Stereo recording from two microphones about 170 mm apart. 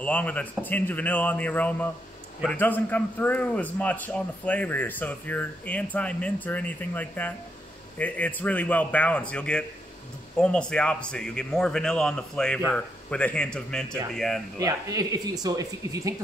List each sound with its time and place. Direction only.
0.0 s a man's voice: 10° left (ahead or behind)
14.6 s speech: 20° right (ahead or behind)